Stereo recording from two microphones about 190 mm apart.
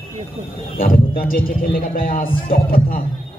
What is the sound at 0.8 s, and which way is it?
A man's voice, 50° left (ahead or behind).